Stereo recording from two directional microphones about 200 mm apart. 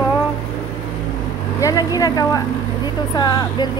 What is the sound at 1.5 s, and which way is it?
A woman's voice, 15° left (ahead or behind).